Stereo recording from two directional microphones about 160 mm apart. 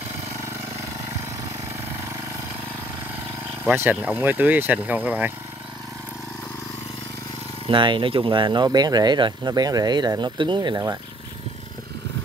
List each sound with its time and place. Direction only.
3.7 s speech: 10° right (ahead or behind)
7.6 s speech: 30° right (ahead or behind)